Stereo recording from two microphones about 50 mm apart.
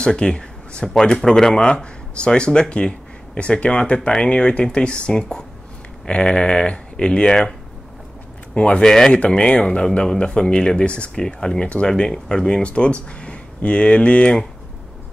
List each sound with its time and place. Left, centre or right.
0.0 s speech: centre
1.7 s speech: centre
8.5 s speech: left
8.8 s speech: centre
9.2 s speech: centre